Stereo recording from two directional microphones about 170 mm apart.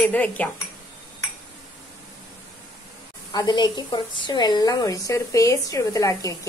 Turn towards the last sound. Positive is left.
turn(degrees=20)  # may be behind; listen again after turning